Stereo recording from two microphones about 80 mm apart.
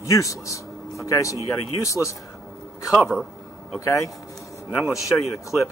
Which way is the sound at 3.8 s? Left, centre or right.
Left.